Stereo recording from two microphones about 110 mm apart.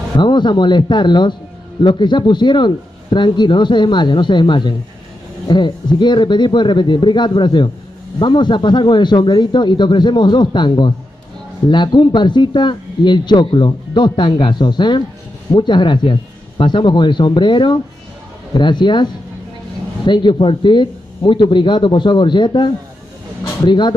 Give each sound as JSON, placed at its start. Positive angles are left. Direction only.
{"t": 0.2, "sound": "speech", "side_deg": 45}
{"t": 20.1, "sound": "speech", "side_deg": 45}